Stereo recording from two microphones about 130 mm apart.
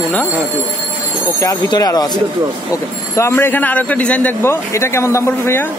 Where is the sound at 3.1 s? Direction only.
20° left (ahead or behind).